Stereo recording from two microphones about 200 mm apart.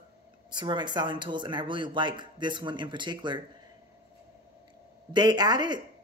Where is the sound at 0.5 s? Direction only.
20° right (ahead or behind).